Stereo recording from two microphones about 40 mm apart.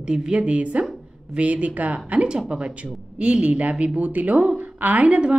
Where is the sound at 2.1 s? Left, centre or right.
Right.